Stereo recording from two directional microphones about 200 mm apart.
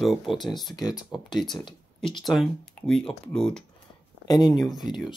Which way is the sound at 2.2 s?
Centre (ahead or behind).